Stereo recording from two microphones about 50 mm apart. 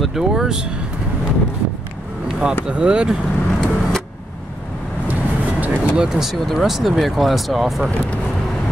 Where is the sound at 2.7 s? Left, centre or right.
Right.